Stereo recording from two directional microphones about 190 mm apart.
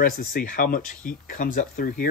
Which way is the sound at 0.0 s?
50° left (ahead or behind).